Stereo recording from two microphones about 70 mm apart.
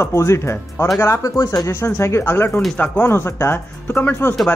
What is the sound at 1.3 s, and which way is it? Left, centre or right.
Speech, left.